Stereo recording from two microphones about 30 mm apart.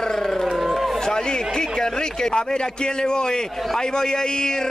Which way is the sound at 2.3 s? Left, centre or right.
Left.